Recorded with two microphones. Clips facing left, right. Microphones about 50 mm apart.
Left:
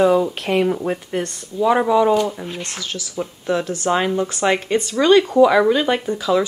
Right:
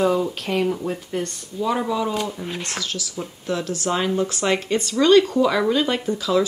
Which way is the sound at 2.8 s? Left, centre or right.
Left.